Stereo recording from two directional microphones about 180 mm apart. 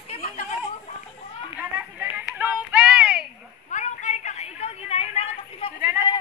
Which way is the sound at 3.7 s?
40° left (ahead or behind).